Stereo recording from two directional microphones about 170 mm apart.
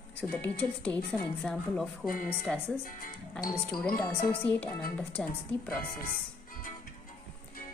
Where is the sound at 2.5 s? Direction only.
10° left (ahead or behind).